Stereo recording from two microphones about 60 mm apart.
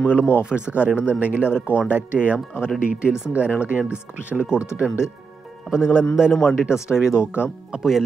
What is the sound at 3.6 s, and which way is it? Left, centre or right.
Speech, right.